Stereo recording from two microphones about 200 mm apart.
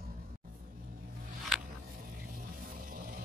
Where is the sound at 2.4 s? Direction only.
45° right (ahead or behind).